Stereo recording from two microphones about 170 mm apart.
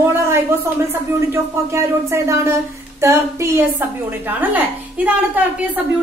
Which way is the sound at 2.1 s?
15° right (ahead or behind).